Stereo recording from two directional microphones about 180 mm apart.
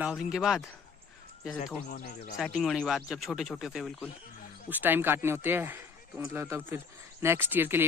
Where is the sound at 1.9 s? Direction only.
55° left (ahead or behind).